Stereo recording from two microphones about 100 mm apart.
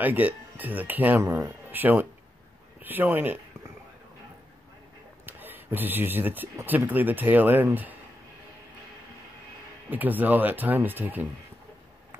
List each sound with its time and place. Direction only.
0.0 s speech: 15° right (ahead or behind)
5.2 s a sound: 20° right (ahead or behind)
6.6 s speech: 20° right (ahead or behind)
9.8 s speech: 15° right (ahead or behind)